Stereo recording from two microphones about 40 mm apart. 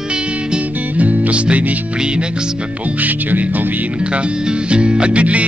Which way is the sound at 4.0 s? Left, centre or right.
Right.